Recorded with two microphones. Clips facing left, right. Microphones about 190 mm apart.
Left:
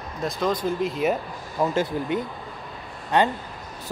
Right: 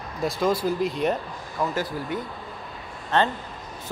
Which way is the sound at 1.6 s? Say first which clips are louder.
Left 4 dB; 20° left (ahead or behind).